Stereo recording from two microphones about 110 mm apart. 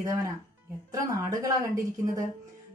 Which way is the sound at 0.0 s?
30° right (ahead or behind).